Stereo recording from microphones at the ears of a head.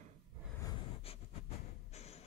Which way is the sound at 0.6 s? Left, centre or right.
Left.